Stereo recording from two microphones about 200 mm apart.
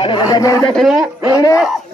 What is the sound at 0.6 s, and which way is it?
Speech, centre (ahead or behind).